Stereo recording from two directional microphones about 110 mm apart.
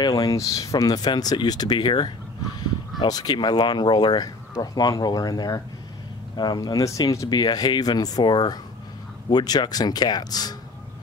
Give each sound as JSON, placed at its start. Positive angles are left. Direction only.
{"t": 0.0, "sound": "speech", "side_deg": 35}